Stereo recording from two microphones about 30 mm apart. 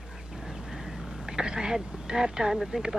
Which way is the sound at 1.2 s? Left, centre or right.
Right.